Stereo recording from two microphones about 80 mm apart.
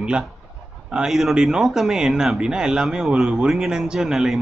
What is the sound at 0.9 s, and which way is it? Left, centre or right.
A man's voice, centre.